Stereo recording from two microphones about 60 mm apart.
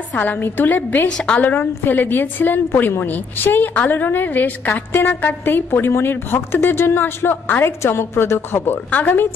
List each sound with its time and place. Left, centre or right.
0.1 s a woman's voice: left
1.0 s a woman's voice: centre
1.9 s a woman's voice: left